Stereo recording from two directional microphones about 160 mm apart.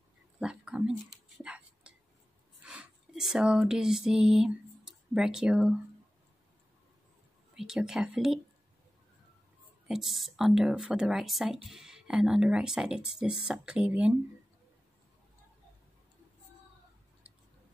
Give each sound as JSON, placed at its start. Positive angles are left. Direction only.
{"t": 0.4, "sound": "whispering", "side_deg": -5}
{"t": 2.6, "sound": "a sound", "side_deg": -5}
{"t": 7.5, "sound": "speech", "side_deg": -5}
{"t": 9.8, "sound": "speech", "side_deg": 0}